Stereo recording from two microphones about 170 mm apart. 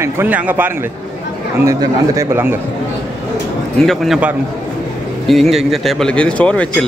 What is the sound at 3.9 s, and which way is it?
A man's voice, centre (ahead or behind).